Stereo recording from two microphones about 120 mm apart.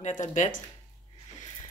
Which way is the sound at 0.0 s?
90° left.